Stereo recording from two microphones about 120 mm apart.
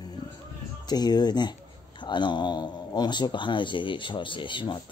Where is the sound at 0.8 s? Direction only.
35° left (ahead or behind).